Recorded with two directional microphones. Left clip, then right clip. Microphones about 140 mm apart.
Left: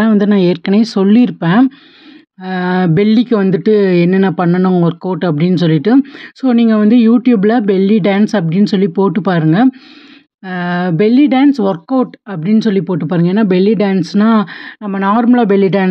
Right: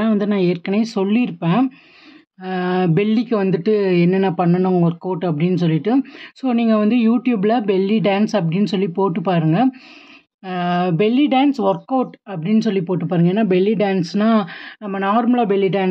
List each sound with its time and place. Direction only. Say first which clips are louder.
0.0 s speech: left 7 dB; 35° left (ahead or behind)